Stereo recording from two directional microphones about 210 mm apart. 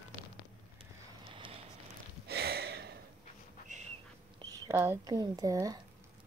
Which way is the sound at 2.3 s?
50° right (ahead or behind).